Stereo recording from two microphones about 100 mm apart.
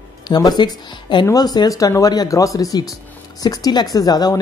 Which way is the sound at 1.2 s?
40° left (ahead or behind).